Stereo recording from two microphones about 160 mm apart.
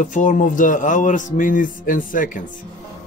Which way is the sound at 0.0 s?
55° left (ahead or behind).